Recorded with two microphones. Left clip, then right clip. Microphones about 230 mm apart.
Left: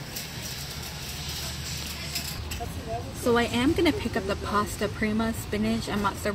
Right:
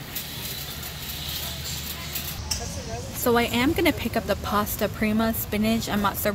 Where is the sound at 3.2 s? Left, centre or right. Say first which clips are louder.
Right 2 dB; centre.